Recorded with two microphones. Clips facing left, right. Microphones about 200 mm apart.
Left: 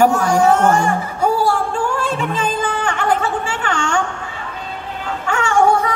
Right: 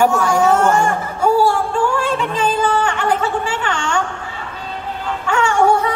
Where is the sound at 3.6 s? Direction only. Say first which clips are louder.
Left 1 dB; 45° left (ahead or behind).